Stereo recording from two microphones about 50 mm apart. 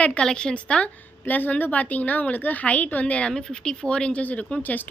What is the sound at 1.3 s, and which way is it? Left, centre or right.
A woman's voice, left.